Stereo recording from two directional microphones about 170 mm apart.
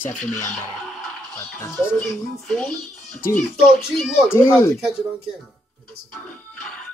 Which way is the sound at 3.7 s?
Centre (ahead or behind).